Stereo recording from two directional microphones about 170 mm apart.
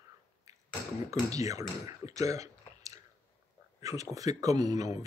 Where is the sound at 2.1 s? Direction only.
20° right (ahead or behind).